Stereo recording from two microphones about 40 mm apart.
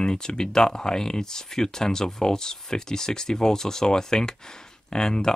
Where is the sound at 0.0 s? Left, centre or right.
Left.